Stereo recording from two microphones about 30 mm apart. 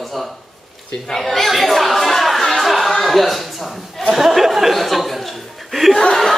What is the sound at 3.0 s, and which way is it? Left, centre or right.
Speech, centre.